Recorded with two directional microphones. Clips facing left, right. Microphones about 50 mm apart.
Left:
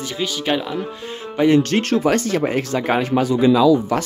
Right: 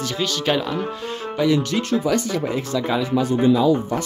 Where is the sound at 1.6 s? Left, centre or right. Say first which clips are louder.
Left 4 dB; left.